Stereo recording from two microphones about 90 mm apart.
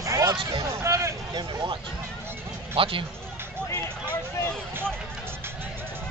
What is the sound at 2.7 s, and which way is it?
Speech, 75° right (ahead or behind).